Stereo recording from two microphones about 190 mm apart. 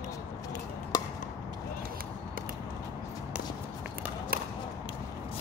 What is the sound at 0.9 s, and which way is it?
Chop, 20° left (ahead or behind).